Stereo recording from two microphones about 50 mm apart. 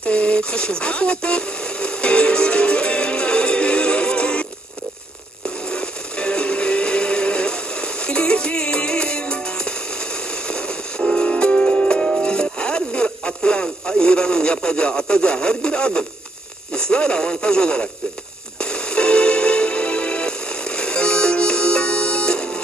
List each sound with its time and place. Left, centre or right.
0.0 s a sound: left
5.7 s music: left
16.7 s radio: centre
18.6 s music: centre